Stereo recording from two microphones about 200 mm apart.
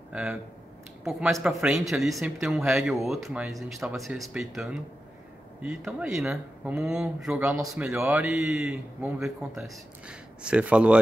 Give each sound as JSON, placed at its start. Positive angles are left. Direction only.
{"t": 0.1, "sound": "a man's voice", "side_deg": -5}